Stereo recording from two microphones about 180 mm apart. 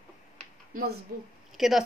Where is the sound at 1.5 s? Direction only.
Centre (ahead or behind).